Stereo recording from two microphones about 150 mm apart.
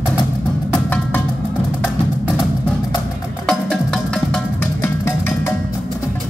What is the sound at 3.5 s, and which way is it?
Music, 5° left (ahead or behind).